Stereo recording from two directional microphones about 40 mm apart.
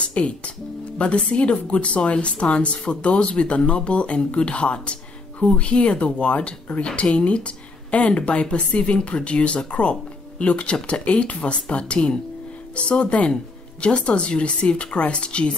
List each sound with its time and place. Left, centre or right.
0.0 s music: left
0.9 s a woman's voice: left